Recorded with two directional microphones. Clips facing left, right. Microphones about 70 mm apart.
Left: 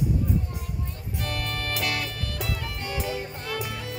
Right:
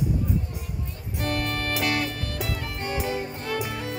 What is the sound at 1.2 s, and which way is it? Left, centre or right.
Music, right.